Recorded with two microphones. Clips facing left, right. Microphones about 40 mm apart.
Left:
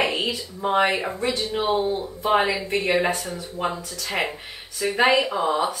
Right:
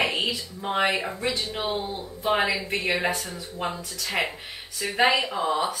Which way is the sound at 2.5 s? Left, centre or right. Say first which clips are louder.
Left 4 dB; centre.